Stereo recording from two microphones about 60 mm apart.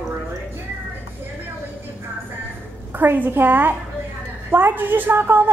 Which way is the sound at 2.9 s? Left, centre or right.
Right.